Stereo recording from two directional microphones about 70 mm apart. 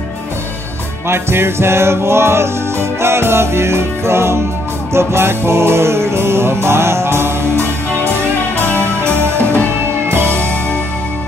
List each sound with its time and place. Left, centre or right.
1.0 s music: right